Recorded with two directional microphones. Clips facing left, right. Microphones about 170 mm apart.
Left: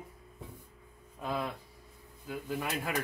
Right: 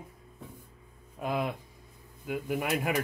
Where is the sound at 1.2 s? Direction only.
15° right (ahead or behind).